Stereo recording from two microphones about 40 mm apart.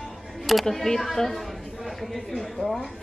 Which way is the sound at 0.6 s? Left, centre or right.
Centre.